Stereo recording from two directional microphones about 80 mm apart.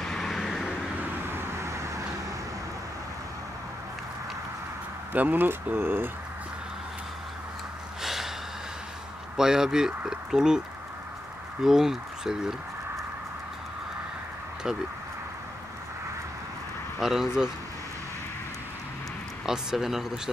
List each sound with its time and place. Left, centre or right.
0.0 s vehicle: centre
1.3 s vehicle: right
5.1 s speech: right
8.0 s gasp: centre
9.4 s speech: centre
11.6 s speech: centre
17.0 s speech: centre
19.4 s speech: centre